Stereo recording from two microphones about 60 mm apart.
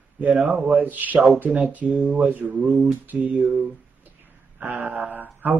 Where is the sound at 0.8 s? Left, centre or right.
Right.